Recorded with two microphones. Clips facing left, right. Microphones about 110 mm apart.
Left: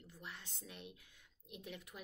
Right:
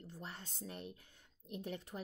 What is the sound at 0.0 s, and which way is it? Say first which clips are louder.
Speech: right 4 dB; 40° right (ahead or behind).